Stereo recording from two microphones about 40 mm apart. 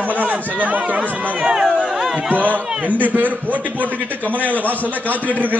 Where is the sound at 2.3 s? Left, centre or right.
Right.